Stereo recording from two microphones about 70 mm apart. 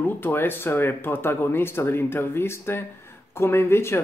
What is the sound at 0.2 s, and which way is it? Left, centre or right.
Speech, left.